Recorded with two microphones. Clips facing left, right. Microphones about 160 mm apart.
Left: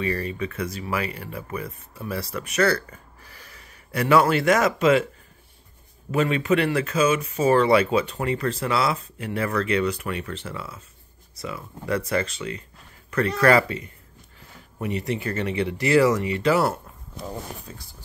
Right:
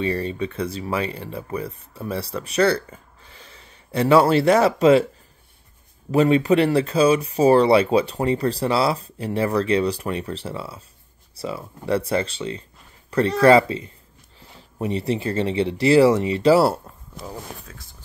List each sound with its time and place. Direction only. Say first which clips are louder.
0.0 s speech: right 3 dB; 30° right (ahead or behind)
6.1 s speech: right 5 dB; 35° right (ahead or behind)